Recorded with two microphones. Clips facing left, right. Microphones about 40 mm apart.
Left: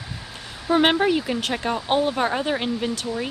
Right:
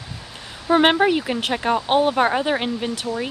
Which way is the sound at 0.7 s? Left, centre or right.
Centre.